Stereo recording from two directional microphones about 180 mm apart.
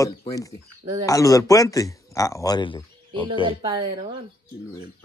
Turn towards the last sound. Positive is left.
turn(degrees=-25)  # may be behind; listen again after turning